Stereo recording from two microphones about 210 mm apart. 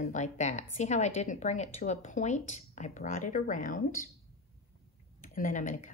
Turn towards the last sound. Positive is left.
turn(degrees=40)  # may be behind; listen again after turning